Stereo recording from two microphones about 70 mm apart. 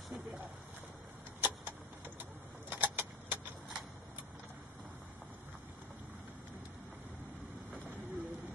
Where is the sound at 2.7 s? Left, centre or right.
Right.